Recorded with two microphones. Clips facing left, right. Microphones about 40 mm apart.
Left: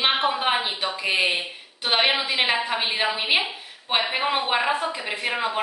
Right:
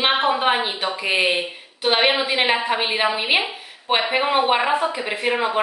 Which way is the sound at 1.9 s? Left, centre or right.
Centre.